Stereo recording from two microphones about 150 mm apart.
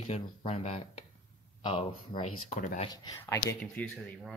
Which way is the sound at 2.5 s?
60° left (ahead or behind).